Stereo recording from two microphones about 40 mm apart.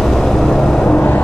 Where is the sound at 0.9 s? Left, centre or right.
Left.